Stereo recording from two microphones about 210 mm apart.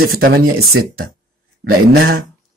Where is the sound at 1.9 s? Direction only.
45° right (ahead or behind).